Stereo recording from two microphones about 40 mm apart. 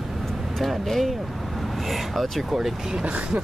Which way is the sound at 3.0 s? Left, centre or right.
Right.